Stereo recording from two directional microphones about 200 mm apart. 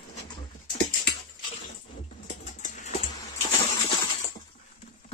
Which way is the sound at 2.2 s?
40° left (ahead or behind).